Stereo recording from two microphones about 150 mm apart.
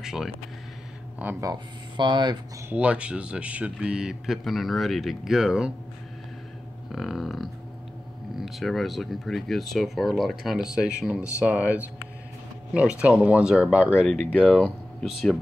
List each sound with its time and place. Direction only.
0.0 s speech: 5° right (ahead or behind)
1.4 s speech: 30° right (ahead or behind)
2.7 s speech: 10° right (ahead or behind)
6.9 s a sound: centre (ahead or behind)
8.5 s speech: centre (ahead or behind)
13.0 s speech: 10° right (ahead or behind)